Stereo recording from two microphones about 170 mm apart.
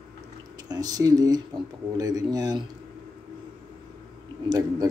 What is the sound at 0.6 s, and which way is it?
Speech, 20° right (ahead or behind).